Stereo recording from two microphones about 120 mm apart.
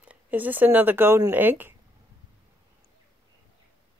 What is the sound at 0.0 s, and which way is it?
Speech, 10° right (ahead or behind).